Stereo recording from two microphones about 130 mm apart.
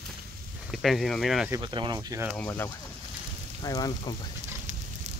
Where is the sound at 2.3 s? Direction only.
15° left (ahead or behind).